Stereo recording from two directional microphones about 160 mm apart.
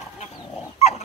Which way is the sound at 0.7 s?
40° left (ahead or behind).